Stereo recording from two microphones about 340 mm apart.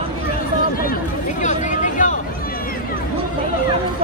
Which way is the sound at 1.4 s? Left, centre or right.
Left.